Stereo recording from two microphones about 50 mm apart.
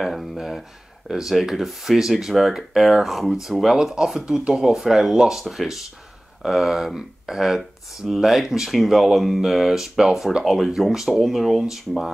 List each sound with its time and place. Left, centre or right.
0.0 s speech: centre